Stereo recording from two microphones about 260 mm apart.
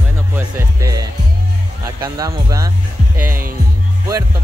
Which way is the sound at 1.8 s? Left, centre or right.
Centre.